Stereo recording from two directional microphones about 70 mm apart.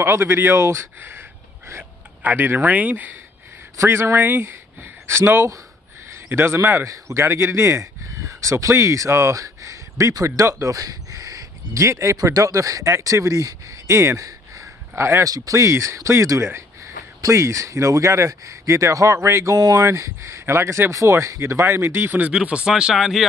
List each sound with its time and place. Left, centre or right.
0.0 s speech: right
2.2 s speech: right
3.7 s speech: right
13.9 s a sound: right
15.2 s speech: right
19.9 s speech: right
22.3 s speech: centre